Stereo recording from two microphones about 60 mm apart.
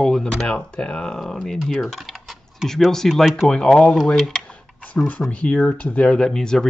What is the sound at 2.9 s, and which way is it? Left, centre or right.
Speech, centre.